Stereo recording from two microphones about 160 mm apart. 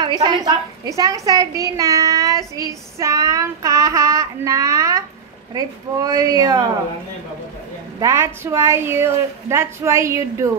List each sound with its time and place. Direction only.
0.2 s a woman's voice: 25° right (ahead or behind)
8.0 s a woman's voice: 15° right (ahead or behind)